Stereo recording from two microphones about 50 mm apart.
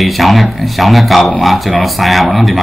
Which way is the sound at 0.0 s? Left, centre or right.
Centre.